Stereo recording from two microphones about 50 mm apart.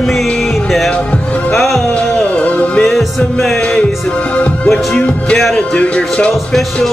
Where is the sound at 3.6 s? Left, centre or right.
Left.